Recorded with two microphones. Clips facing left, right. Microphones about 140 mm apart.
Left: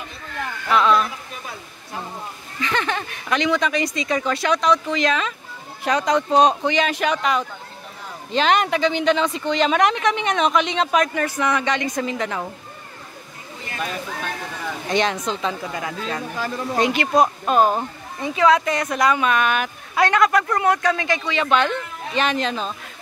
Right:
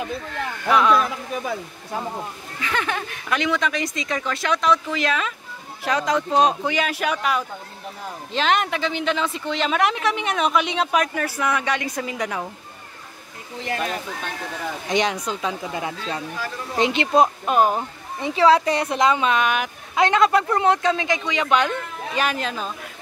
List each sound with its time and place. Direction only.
2.6 s speech: 5° right (ahead or behind)
14.9 s a woman's voice: 15° right (ahead or behind)
17.5 s speech: 10° right (ahead or behind)
18.2 s a woman's voice: 30° right (ahead or behind); by 22.7 s 5° right (ahead or behind)